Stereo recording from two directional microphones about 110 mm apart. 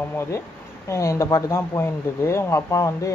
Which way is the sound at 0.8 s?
25° left (ahead or behind).